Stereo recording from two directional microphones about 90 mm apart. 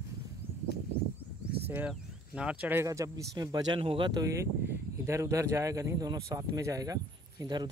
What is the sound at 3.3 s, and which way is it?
Speech, 50° right (ahead or behind).